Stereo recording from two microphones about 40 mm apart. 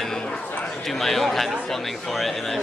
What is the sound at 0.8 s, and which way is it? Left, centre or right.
A woman's voice, centre.